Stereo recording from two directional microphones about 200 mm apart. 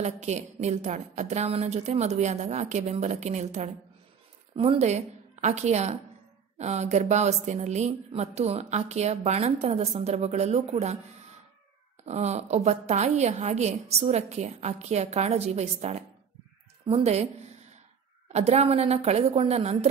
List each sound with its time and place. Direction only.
0.0 s a woman's voice: 35° right (ahead or behind)
12.0 s speech: 35° right (ahead or behind)
18.3 s speech: 35° right (ahead or behind)